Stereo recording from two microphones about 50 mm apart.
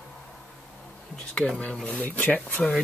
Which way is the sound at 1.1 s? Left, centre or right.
Centre.